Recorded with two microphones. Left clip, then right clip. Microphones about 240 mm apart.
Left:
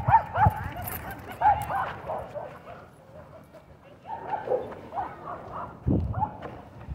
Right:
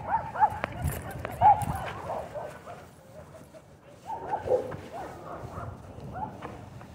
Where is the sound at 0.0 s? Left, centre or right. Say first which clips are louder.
Left 4 dB; left.